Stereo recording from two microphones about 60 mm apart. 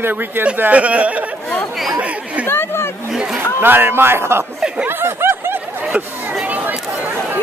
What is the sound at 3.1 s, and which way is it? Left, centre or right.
Chatter, centre.